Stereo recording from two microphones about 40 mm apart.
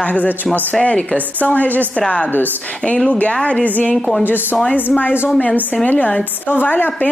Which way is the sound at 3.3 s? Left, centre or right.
Left.